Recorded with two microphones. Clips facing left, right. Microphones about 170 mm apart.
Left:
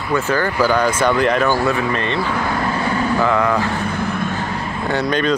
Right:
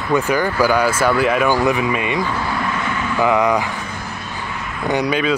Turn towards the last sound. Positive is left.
turn(degrees=-5)  # may be behind; listen again after turning